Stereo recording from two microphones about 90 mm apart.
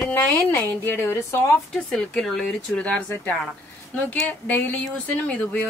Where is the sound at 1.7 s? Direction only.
5° left (ahead or behind).